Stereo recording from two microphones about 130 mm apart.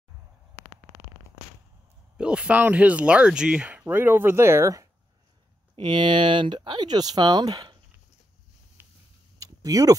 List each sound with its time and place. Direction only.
2.1 s speech: 10° right (ahead or behind)
5.8 s speech: 35° right (ahead or behind)
9.4 s a sound: 30° right (ahead or behind)